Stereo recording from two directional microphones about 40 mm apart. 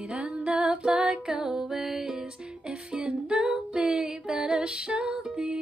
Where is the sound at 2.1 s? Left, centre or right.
Right.